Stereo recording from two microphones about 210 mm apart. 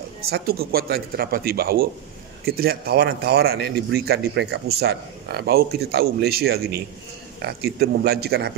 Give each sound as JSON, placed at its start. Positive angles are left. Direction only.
{"t": 0.3, "sound": "a man's voice", "side_deg": -45}